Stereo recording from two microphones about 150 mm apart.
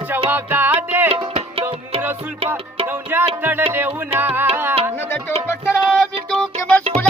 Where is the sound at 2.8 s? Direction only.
15° right (ahead or behind).